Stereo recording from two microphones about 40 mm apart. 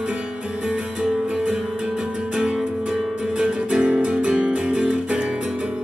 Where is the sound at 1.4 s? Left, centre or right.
Centre.